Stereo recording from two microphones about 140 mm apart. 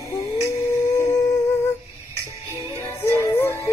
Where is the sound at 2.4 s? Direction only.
20° left (ahead or behind).